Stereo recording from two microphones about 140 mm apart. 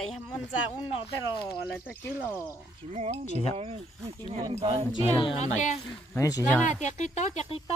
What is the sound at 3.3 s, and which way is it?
Speech, 45° left (ahead or behind).